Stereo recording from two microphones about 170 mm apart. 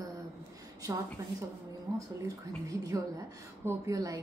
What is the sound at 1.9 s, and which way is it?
A woman's voice, 20° right (ahead or behind).